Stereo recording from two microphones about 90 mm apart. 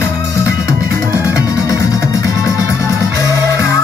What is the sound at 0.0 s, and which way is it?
Music, 35° left (ahead or behind).